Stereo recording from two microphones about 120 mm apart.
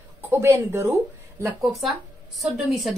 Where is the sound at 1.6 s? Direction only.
Centre (ahead or behind).